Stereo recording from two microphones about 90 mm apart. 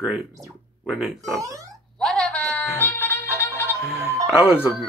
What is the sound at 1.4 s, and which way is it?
Speech, 40° right (ahead or behind).